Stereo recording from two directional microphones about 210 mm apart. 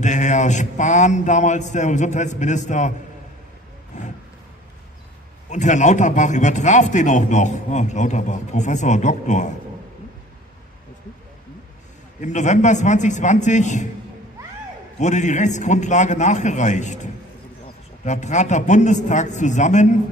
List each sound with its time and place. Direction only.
0.0 s a man's voice: 35° left (ahead or behind)
3.9 s a sound: 35° left (ahead or behind)
5.5 s a man's voice: 35° left (ahead or behind)
12.2 s a man's voice: 35° left (ahead or behind)
15.0 s a man's voice: 35° left (ahead or behind)